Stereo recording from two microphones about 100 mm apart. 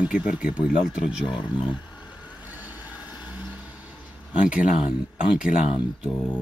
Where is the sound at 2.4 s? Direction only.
15° right (ahead or behind).